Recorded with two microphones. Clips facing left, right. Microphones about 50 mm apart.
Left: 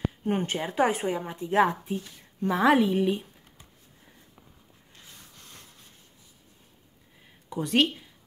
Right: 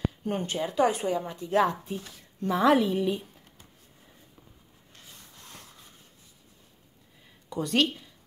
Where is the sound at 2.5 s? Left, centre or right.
Centre.